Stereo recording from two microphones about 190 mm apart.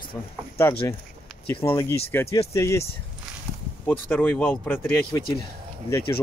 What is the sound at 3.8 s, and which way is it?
Speech, 10° left (ahead or behind).